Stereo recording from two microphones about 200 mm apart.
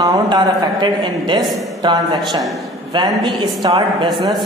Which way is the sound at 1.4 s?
Centre (ahead or behind).